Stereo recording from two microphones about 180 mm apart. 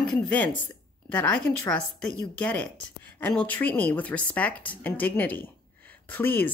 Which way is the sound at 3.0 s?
10° left (ahead or behind).